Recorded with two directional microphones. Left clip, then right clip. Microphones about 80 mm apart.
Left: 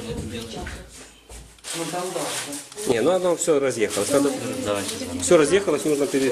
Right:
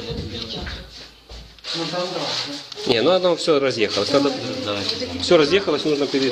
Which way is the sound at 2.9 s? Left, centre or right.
Centre.